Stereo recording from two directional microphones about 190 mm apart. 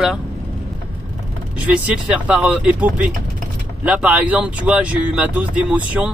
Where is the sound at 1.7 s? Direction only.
5° right (ahead or behind).